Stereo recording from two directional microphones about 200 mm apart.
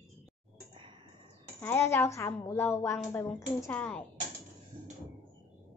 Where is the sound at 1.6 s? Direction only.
10° left (ahead or behind).